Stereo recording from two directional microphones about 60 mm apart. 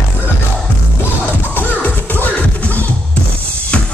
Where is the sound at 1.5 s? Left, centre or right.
Left.